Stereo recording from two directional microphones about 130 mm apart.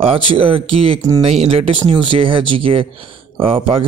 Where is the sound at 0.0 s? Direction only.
45° right (ahead or behind).